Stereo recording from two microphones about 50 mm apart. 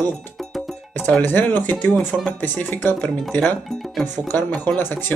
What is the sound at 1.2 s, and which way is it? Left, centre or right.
Speech, left.